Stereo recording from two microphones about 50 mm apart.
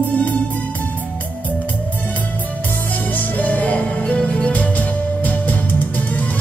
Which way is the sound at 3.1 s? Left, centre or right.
Left.